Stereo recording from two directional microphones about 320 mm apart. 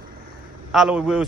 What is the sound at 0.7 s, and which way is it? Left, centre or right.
Speech, centre.